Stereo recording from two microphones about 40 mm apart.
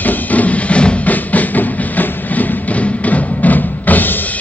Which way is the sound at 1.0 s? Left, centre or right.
Left.